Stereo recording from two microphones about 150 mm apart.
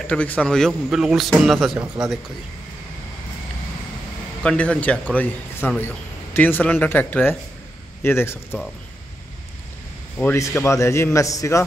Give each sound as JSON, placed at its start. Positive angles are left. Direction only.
{"t": 0.0, "sound": "speech", "side_deg": 10}
{"t": 4.4, "sound": "a man's voice", "side_deg": 5}
{"t": 10.1, "sound": "speech", "side_deg": 15}